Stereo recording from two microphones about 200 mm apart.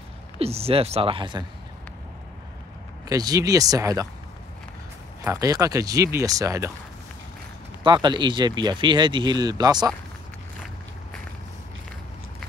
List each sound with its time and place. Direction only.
0.4 s speech: 30° right (ahead or behind)
3.1 s speech: 20° right (ahead or behind)
5.2 s speech: 15° right (ahead or behind)
7.8 s speech: 20° right (ahead or behind)